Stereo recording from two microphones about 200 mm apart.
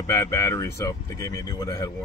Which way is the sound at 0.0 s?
15° left (ahead or behind).